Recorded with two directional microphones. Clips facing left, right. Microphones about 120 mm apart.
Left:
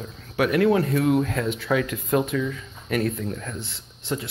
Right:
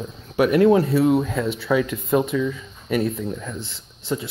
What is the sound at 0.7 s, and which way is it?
A man's voice, 10° right (ahead or behind).